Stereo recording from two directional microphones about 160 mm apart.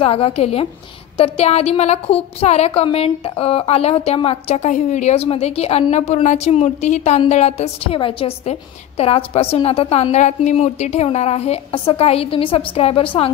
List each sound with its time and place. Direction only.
0.0 s a woman's voice: 35° left (ahead or behind)